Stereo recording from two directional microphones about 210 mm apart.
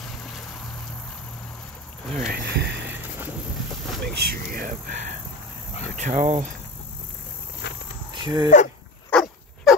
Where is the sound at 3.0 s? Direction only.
10° right (ahead or behind).